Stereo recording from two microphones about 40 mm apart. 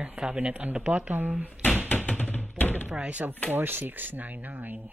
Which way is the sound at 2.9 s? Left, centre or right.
Right.